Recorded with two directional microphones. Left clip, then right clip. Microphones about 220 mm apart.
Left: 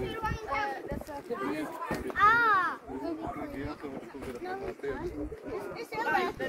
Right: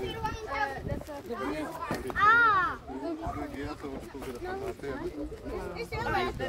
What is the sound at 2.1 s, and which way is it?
Children playing, 50° left (ahead or behind).